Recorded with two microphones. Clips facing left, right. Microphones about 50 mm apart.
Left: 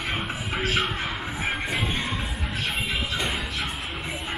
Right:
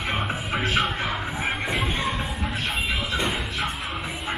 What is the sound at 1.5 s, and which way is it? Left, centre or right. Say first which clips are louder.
Music: right 1 dB; centre.